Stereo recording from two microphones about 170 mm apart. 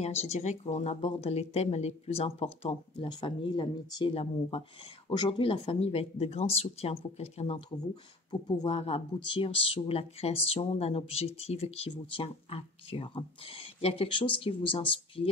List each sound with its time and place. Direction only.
0.0 s speech: 40° left (ahead or behind)